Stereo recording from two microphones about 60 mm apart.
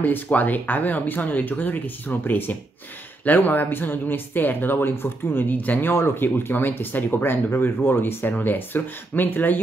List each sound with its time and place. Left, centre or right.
0.0 s speech: left